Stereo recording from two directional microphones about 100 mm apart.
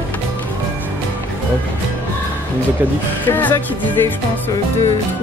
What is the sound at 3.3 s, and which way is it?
Music, 20° left (ahead or behind).